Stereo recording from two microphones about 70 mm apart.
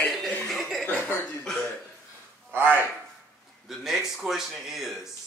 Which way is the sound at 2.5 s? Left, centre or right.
Right.